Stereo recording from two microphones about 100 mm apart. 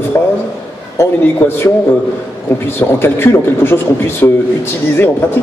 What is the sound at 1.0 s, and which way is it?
Speech, 25° left (ahead or behind).